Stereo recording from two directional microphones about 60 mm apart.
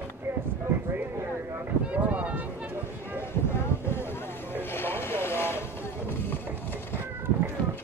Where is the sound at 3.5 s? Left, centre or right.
Left.